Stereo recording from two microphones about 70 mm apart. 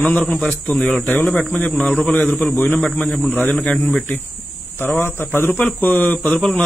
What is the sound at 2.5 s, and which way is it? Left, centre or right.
Speech, left.